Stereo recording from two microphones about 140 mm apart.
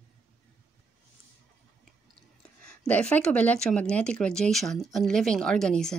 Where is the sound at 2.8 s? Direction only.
10° left (ahead or behind).